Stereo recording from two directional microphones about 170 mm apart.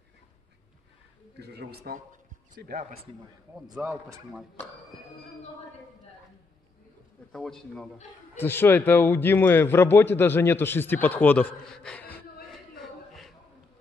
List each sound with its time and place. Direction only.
1.4 s speech: 70° right (ahead or behind); by 2.9 s 55° right (ahead or behind)
3.7 s a man's voice: 5° right (ahead or behind)
7.3 s a man's voice: 5° left (ahead or behind)
12.8 s a sound: centre (ahead or behind)